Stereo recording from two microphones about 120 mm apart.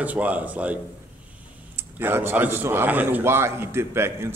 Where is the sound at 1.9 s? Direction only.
20° right (ahead or behind).